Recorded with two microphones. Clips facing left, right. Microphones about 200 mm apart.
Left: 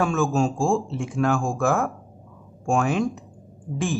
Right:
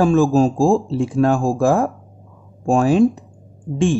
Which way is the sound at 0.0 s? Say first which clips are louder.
Right 8 dB; 35° right (ahead or behind).